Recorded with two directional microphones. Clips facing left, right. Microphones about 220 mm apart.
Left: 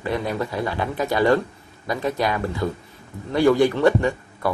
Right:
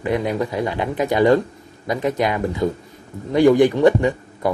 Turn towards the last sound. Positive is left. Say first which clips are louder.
# right 3 dB
turn(degrees=-20)  # may be behind; listen again after turning